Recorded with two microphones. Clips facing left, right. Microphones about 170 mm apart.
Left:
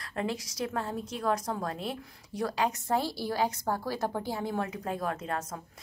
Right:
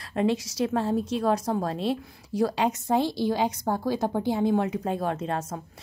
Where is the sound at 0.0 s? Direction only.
25° right (ahead or behind).